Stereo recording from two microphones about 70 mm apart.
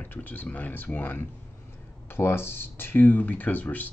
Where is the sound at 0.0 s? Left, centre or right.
Left.